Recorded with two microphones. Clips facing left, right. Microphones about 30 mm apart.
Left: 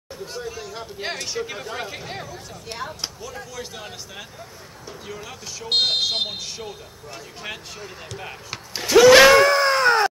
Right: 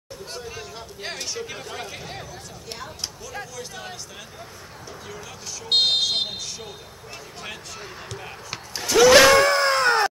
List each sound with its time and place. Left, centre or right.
0.7 s speech: centre
5.0 s speech: centre
8.2 s a sound: centre